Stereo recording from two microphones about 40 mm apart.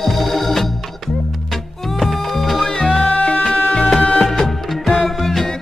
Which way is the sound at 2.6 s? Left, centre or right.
Centre.